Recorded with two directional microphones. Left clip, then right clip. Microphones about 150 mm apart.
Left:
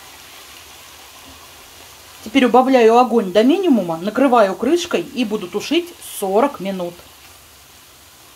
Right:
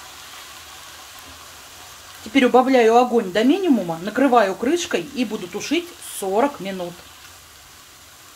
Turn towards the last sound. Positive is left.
turn(degrees=25)  # may be behind; listen again after turning